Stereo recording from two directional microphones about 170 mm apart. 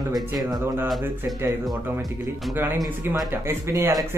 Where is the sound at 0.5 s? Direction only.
15° right (ahead or behind).